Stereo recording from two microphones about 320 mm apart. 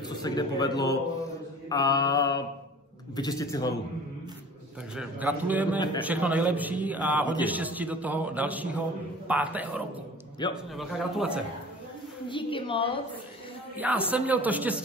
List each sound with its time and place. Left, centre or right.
0.2 s mantra: centre
4.9 s a man's voice: centre
12.3 s mantra: centre
13.7 s a man's voice: centre